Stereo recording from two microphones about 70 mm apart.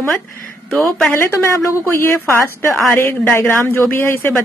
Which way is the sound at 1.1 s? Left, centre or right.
Left.